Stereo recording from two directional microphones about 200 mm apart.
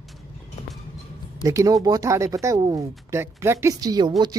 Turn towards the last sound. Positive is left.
turn(degrees=-20)  # may be behind; listen again after turning